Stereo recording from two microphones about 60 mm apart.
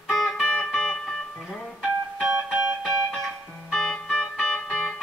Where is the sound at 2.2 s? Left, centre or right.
Centre.